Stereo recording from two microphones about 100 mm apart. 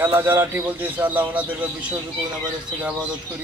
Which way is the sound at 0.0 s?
20° right (ahead or behind).